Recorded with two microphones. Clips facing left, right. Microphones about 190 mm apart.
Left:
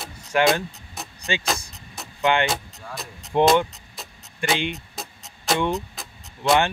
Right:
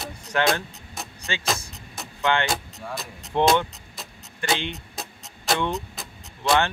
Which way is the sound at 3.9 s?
Centre (ahead or behind).